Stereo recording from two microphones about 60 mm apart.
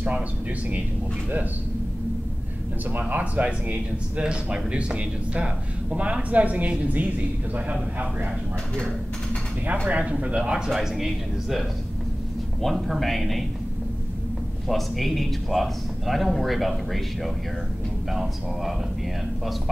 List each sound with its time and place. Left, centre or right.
2.9 s speech: right
9.8 s speech: right
10.7 s a man's voice: centre
12.6 s a man's voice: centre
14.7 s a man's voice: centre